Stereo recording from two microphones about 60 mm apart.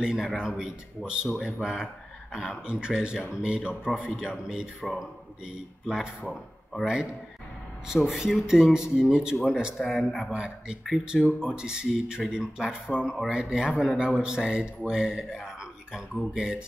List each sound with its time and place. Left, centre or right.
0.0 s speech: centre
5.9 s speech: centre
6.9 s speech: centre
10.3 s speech: centre
15.3 s a sound: centre
16.3 s speech: centre